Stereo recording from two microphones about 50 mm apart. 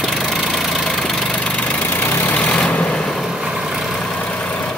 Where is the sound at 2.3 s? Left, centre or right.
Left.